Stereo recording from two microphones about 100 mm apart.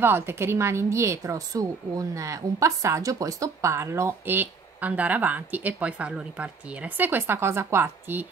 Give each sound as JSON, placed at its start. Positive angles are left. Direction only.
{"t": 0.0, "sound": "a woman's voice", "side_deg": -20}